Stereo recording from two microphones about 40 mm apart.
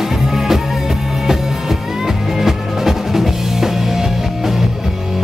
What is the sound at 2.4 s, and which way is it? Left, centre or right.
Music, centre.